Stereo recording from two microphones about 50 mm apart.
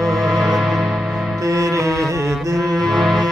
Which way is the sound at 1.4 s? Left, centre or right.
Right.